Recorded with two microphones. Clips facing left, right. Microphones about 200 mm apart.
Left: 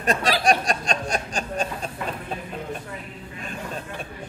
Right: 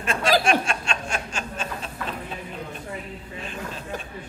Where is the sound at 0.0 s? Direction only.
40° left (ahead or behind).